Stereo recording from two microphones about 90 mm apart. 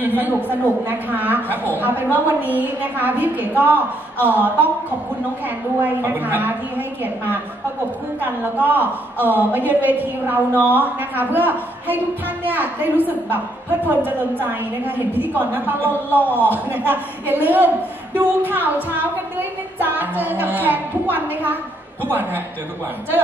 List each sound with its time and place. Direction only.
0.2 s a woman's voice: 20° right (ahead or behind)
5.8 s a woman's voice: 20° right (ahead or behind)
8.2 s a woman's voice: 20° right (ahead or behind)